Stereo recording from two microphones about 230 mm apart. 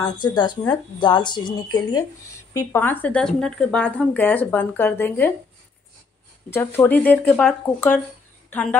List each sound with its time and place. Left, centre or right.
0.0 s speech: centre
6.5 s a woman's voice: centre